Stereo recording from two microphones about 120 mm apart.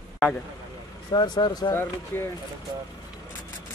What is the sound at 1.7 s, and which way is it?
Speech, 20° left (ahead or behind).